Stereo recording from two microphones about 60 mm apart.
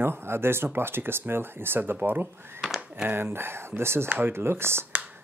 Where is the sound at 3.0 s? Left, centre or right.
Right.